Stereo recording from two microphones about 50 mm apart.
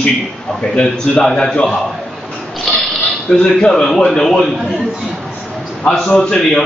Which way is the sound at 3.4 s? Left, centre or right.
Centre.